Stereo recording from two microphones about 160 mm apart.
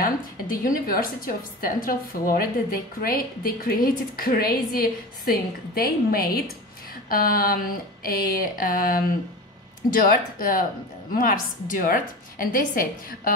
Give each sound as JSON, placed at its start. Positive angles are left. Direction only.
{"t": 0.0, "sound": "a woman's voice", "side_deg": 65}